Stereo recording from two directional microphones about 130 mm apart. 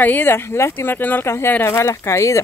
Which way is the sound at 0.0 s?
15° left (ahead or behind).